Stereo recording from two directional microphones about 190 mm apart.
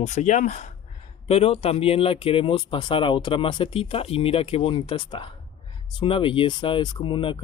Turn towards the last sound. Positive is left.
turn(degrees=25)  # may be behind; listen again after turning